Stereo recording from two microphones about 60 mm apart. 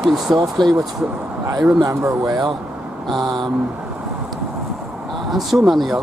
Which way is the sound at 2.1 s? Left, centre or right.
Right.